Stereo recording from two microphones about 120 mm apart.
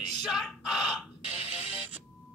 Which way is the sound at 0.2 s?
Centre (ahead or behind).